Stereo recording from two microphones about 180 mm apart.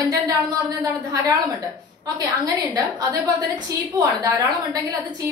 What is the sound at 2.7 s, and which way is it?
A woman's voice, 20° right (ahead or behind).